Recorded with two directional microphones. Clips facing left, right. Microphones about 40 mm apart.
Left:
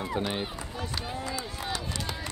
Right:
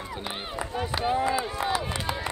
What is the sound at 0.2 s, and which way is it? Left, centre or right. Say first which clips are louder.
Speech: left 4 dB; right.